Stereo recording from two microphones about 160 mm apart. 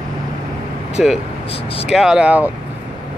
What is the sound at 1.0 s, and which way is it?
Speech, centre (ahead or behind).